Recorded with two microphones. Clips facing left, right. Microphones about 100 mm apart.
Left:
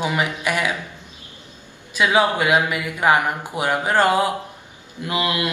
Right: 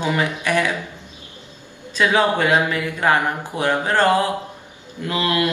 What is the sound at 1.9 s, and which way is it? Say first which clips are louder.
A man's voice: even; 15° left (ahead or behind).